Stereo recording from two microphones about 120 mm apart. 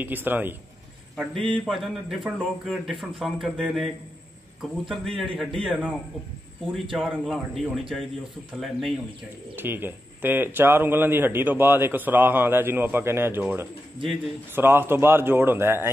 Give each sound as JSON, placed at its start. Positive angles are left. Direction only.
{"t": 0.0, "sound": "speech", "side_deg": -15}
{"t": 1.5, "sound": "a man's voice", "side_deg": 0}
{"t": 9.6, "sound": "a man's voice", "side_deg": -15}